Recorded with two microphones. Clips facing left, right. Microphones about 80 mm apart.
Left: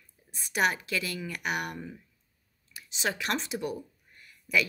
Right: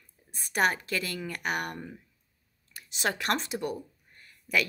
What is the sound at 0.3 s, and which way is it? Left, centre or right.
Speech, right.